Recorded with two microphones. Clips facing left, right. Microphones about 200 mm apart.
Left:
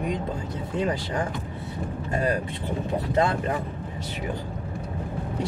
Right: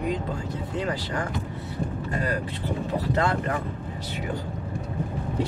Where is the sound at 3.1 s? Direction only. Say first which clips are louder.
Left 2 dB; 20° left (ahead or behind).